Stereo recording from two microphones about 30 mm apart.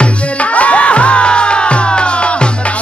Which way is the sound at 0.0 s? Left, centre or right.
Left.